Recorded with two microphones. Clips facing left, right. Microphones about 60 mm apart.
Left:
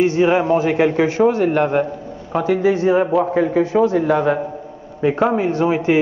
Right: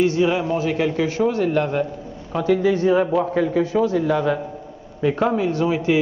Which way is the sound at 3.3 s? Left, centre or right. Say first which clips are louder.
Left 3 dB; left.